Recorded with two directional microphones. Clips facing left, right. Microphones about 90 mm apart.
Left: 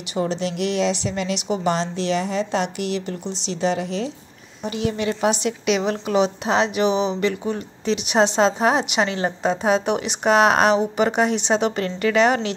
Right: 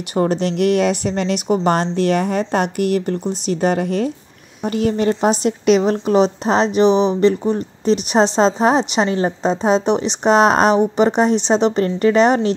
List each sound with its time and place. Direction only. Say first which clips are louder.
0.1 s a woman's voice: right 6 dB; 50° right (ahead or behind)